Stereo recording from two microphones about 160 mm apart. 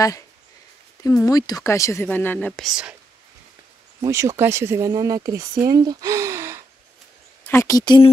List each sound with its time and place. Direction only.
1.0 s speech: 20° left (ahead or behind); by 3.0 s 5° right (ahead or behind)
4.0 s speech: 20° right (ahead or behind)
7.4 s a woman's voice: 15° left (ahead or behind)